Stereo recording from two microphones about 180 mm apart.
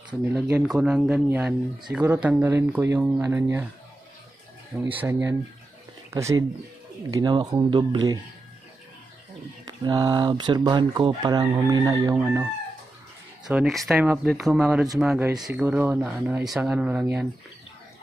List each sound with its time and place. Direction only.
0.2 s speech: 5° right (ahead or behind)
4.7 s speech: 10° right (ahead or behind)
6.0 s speech: 15° right (ahead or behind)
9.7 s speech: 20° right (ahead or behind)
13.5 s speech: centre (ahead or behind)